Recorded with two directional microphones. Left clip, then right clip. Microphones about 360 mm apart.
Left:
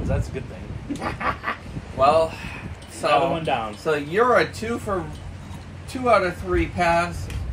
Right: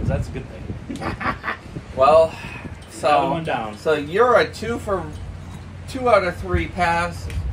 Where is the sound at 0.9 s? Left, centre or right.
Centre.